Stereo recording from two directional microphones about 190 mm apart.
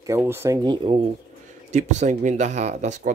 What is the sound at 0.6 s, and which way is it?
Speech, 25° right (ahead or behind).